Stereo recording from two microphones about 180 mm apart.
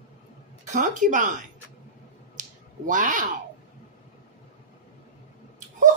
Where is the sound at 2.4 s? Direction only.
45° right (ahead or behind).